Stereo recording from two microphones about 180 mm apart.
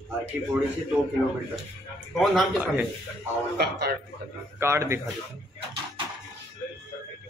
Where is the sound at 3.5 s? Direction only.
65° right (ahead or behind).